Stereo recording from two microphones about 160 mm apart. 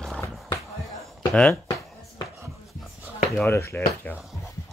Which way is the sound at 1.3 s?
5° left (ahead or behind).